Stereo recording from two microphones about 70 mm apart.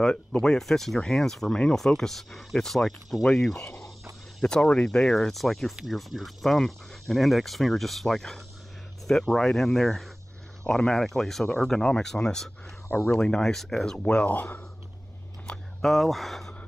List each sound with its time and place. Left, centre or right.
0.0 s speech: centre
13.9 s speech: centre
15.5 s a sound: centre
15.8 s speech: centre